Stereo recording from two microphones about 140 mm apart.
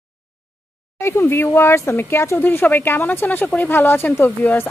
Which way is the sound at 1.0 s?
15° left (ahead or behind).